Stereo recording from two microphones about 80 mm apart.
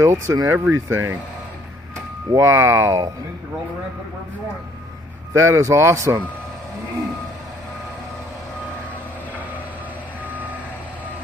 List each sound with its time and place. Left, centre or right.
0.0 s speech: right
2.3 s speech: right
5.3 s speech: right